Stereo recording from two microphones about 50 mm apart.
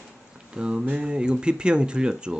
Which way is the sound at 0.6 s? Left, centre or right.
Centre.